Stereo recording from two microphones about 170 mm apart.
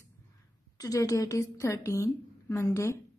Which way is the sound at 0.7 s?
20° left (ahead or behind).